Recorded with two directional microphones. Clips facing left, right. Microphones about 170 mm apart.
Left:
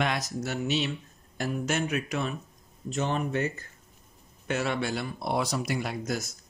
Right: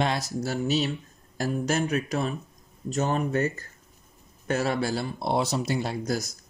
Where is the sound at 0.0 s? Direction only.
30° right (ahead or behind).